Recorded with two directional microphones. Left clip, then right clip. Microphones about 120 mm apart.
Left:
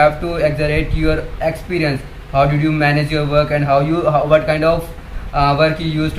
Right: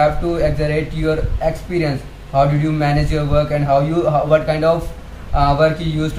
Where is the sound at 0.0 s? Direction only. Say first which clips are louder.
Left 2 dB; 15° right (ahead or behind).